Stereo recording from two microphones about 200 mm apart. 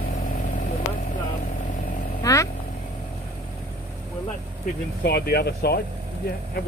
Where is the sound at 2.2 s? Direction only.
15° left (ahead or behind).